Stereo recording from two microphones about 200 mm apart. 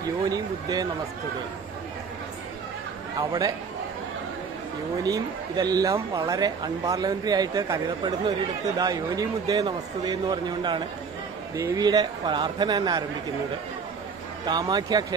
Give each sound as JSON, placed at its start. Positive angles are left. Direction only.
{"t": 0.3, "sound": "speech", "side_deg": -20}
{"t": 3.2, "sound": "speech", "side_deg": -20}
{"t": 5.0, "sound": "speech", "side_deg": -20}
{"t": 14.4, "sound": "speech", "side_deg": -20}